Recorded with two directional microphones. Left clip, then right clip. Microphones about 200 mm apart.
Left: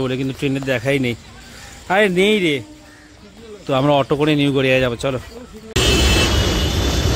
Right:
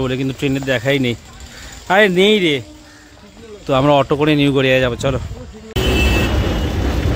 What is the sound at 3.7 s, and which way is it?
Speech, 5° right (ahead or behind).